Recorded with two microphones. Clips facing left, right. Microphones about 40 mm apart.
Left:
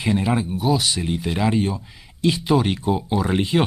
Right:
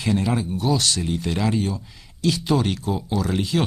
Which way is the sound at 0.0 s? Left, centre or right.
Centre.